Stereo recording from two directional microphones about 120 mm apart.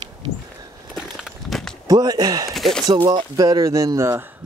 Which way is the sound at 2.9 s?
45° right (ahead or behind).